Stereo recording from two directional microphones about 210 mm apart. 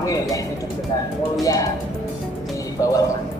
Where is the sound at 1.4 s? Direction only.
15° left (ahead or behind).